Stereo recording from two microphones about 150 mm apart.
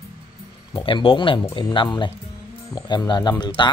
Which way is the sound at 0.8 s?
35° left (ahead or behind).